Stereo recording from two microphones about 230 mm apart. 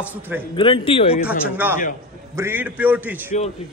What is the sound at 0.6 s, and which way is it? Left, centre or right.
Speech, left.